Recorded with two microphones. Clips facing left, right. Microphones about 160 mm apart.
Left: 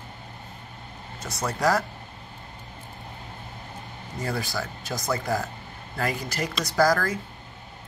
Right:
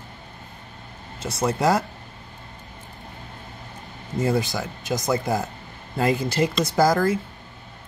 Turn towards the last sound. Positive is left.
turn(degrees=-20)  # may be behind; listen again after turning